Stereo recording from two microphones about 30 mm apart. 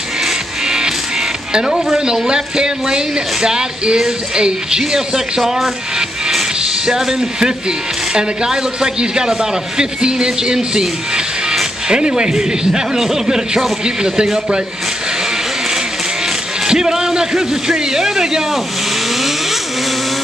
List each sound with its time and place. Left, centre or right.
0.7 s music: centre
2.2 s speech: right
7.1 s speech: right
13.8 s speech: right
16.6 s a man's voice: right